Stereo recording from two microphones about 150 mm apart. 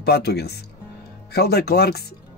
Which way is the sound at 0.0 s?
90° left.